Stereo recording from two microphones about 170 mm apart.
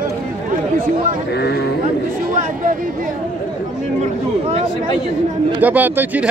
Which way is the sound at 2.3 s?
50° right (ahead or behind).